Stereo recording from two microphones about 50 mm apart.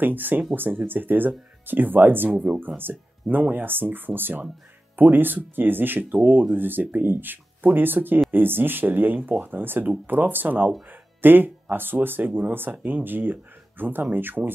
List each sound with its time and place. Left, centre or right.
0.0 s speech: right